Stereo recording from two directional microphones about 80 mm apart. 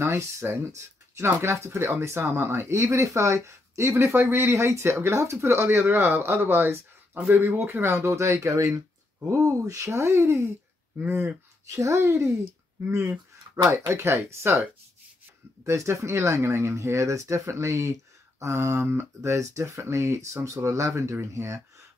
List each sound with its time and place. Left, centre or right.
0.0 s speech: right
11.6 s speech: right
13.6 s speech: right
15.6 s speech: right